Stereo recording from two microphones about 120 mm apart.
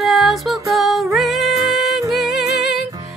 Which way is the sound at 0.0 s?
Centre (ahead or behind).